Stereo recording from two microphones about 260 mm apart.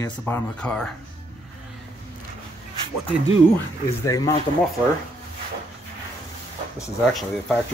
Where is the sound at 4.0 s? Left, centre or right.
Centre.